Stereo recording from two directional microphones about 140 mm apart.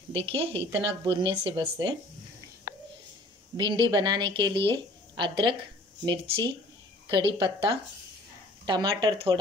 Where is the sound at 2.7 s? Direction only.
90° left.